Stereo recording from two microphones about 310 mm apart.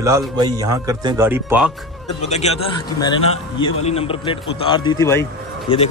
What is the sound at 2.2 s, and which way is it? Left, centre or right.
A man's voice, left.